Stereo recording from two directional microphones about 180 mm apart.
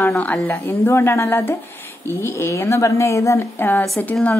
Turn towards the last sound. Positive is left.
turn(degrees=10)  # may be behind; listen again after turning